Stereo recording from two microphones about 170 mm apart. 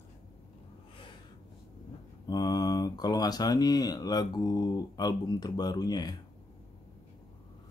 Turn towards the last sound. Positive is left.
turn(degrees=25)  # may be behind; listen again after turning